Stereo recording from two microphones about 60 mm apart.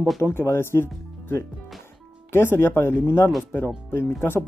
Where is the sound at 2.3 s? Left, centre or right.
Left.